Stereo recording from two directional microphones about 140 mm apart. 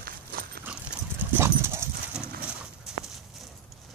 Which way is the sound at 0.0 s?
90° right.